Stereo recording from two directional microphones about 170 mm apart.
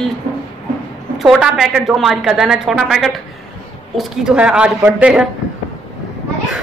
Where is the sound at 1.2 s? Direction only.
Centre (ahead or behind).